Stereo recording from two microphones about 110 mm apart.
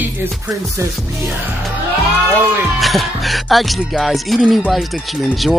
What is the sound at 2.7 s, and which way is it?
Speech, centre (ahead or behind).